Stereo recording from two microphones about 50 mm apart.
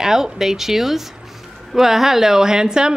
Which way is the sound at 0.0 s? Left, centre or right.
Centre.